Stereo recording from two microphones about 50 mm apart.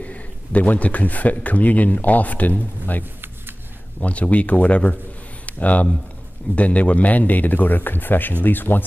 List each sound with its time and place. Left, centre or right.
0.0 s speech: left